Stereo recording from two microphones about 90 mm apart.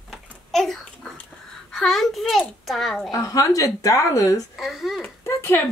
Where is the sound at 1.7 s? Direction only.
Centre (ahead or behind).